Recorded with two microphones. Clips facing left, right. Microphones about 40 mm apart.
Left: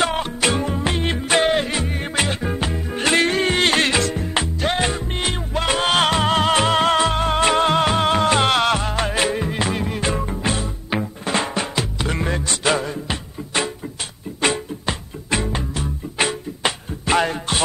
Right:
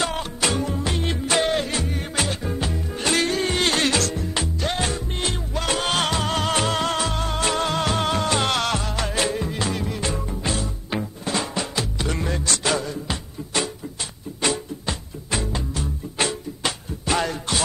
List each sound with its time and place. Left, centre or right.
0.0 s music: left